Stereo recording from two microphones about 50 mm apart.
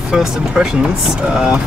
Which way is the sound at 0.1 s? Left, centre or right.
Centre.